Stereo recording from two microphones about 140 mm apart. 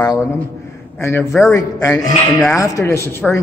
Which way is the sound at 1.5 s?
25° left (ahead or behind).